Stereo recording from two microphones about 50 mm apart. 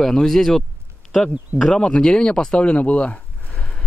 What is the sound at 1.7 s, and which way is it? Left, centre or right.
Speech, centre.